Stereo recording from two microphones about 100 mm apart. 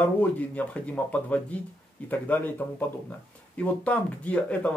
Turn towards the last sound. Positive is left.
turn(degrees=15)  # may be behind; listen again after turning